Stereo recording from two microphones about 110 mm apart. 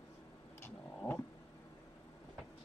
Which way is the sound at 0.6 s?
15° left (ahead or behind).